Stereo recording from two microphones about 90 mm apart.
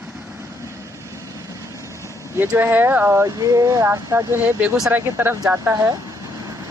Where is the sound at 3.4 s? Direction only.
35° right (ahead or behind).